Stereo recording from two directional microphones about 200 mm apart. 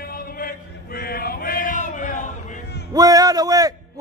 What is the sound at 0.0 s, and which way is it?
Male singing, 45° left (ahead or behind).